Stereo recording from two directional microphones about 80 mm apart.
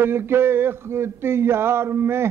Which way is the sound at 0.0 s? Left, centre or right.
Right.